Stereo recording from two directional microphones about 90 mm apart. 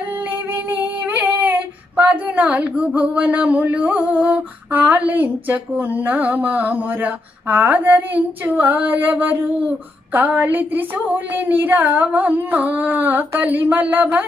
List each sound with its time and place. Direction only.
0.7 s female singing: 20° right (ahead or behind)
4.7 s speech: 15° right (ahead or behind)